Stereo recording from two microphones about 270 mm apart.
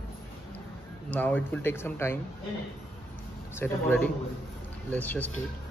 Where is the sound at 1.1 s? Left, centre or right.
Centre.